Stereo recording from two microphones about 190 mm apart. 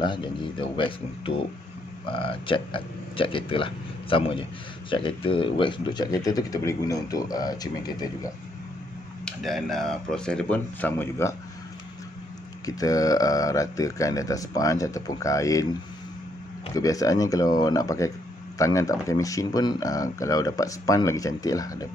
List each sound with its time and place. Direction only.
0.0 s speech: 25° left (ahead or behind)
9.2 s speech: centre (ahead or behind)
12.6 s speech: 20° left (ahead or behind)
16.7 s speech: 20° left (ahead or behind)